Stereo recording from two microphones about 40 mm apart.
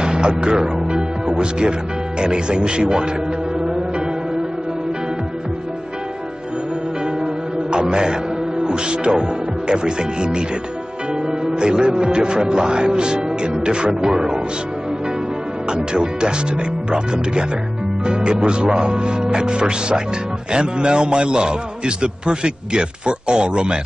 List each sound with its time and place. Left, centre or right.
0.0 s speech: right
7.7 s music: right
8.6 s speech: right
11.6 s a man's voice: right
15.7 s a man's voice: right